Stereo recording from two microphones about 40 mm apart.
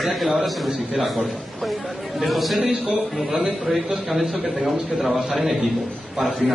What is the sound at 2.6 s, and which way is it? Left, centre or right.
Speech, centre.